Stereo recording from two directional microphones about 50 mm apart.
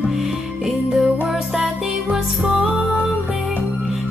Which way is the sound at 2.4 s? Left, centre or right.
Centre.